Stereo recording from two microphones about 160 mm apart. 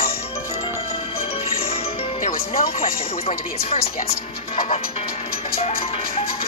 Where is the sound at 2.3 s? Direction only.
65° left (ahead or behind).